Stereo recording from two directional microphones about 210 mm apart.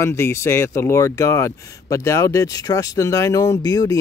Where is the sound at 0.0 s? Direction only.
10° left (ahead or behind).